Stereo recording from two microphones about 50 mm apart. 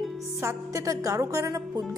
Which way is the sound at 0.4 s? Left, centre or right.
Right.